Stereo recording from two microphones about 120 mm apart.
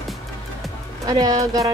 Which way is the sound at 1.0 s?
35° right (ahead or behind).